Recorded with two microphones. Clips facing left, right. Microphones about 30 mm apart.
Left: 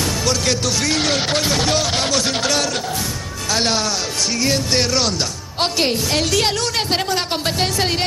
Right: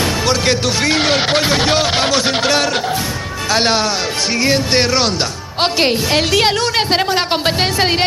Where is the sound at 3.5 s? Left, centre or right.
Right.